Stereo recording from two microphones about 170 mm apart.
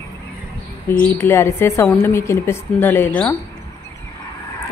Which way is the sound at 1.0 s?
10° left (ahead or behind).